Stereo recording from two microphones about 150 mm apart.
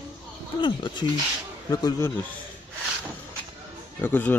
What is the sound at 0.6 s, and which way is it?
Speech, 30° left (ahead or behind).